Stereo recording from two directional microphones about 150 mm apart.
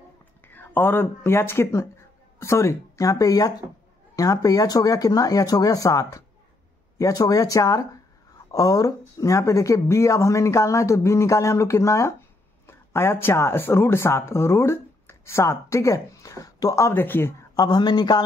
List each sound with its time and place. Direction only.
0.5 s speech: 15° left (ahead or behind)
17.6 s speech: 30° left (ahead or behind)